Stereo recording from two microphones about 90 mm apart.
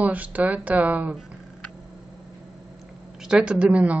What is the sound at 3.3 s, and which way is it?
Speech, 10° right (ahead or behind).